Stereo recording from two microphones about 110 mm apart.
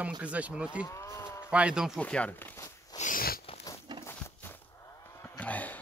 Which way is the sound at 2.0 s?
10° left (ahead or behind).